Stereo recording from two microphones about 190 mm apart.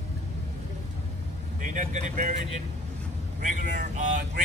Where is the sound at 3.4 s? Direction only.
40° right (ahead or behind).